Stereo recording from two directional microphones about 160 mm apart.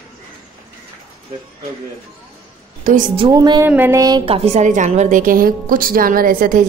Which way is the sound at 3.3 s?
25° right (ahead or behind).